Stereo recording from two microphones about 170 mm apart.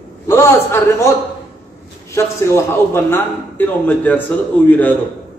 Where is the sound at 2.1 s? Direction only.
15° left (ahead or behind).